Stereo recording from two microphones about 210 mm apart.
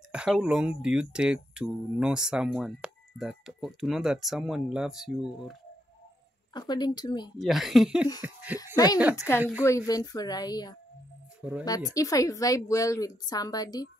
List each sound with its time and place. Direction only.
0.1 s speech: 5° right (ahead or behind)
6.5 s speech: 20° left (ahead or behind)
7.3 s speech: centre (ahead or behind)
8.7 s a woman's voice: 20° left (ahead or behind)
9.4 s a woman's voice: 5° right (ahead or behind)
9.7 s a woman's voice: 15° left (ahead or behind)